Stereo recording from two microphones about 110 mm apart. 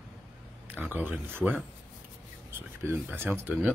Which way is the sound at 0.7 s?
15° right (ahead or behind).